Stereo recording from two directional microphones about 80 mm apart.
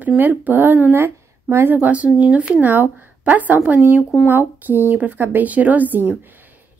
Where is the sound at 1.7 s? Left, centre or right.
Centre.